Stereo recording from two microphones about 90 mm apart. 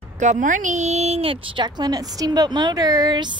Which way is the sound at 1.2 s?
80° right.